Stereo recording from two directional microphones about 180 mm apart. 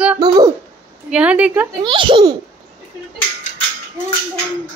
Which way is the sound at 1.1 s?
5° right (ahead or behind).